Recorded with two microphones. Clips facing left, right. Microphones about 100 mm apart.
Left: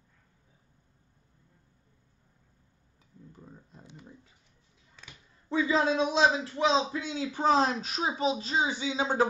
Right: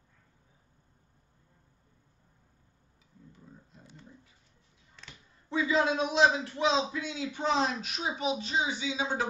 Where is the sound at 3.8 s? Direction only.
20° left (ahead or behind).